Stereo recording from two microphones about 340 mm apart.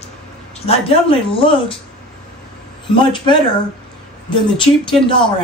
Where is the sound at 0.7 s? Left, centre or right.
Centre.